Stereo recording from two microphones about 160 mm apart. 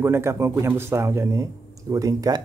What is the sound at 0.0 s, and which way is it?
Speech, 15° right (ahead or behind).